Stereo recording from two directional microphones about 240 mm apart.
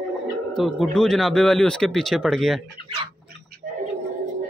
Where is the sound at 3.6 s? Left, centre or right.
Right.